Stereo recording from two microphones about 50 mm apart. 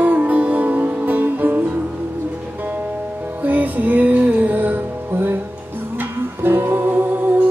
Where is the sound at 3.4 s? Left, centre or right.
Right.